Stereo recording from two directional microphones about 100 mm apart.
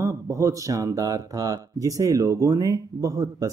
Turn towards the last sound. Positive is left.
turn(degrees=-35)  # may be behind; listen again after turning